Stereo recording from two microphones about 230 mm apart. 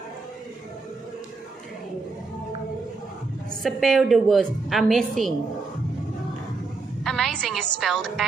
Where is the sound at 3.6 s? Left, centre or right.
Centre.